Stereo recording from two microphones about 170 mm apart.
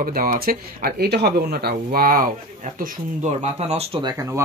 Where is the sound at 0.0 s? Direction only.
55° right (ahead or behind); by 4.0 s 40° right (ahead or behind).